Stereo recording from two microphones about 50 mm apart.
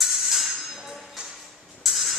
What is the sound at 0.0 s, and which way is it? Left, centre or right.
Tambourine, centre.